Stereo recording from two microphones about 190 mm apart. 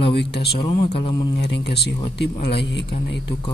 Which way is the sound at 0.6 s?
30° left (ahead or behind).